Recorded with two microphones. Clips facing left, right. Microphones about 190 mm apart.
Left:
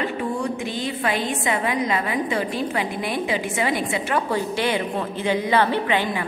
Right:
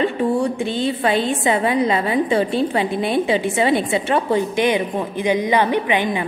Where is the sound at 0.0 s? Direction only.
30° right (ahead or behind).